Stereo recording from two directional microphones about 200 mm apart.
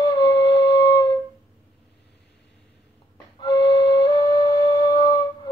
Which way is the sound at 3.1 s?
20° left (ahead or behind).